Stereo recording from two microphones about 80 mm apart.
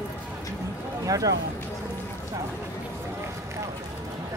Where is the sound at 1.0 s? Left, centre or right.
Right.